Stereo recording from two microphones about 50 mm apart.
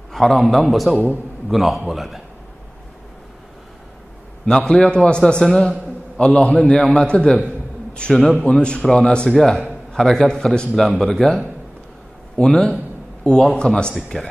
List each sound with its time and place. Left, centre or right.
0.1 s a man's voice: centre
4.5 s a man's voice: centre
9.4 s a man's voice: centre
13.9 s a man's voice: centre